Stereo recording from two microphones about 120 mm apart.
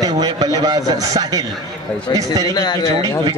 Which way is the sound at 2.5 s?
30° left (ahead or behind).